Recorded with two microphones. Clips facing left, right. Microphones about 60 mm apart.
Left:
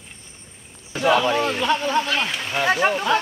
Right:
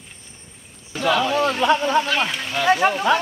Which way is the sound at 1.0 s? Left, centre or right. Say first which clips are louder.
Left 2 dB; centre.